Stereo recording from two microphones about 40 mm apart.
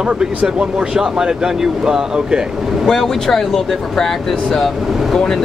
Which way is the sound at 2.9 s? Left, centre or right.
Centre.